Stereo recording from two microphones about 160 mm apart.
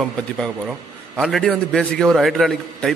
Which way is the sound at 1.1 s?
Centre (ahead or behind).